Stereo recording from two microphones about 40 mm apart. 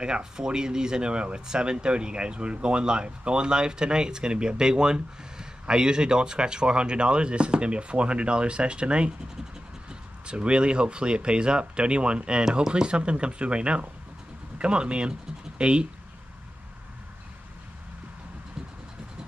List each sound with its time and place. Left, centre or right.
0.0 s speech: centre